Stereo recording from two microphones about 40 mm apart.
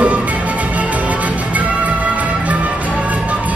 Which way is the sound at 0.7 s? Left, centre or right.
Right.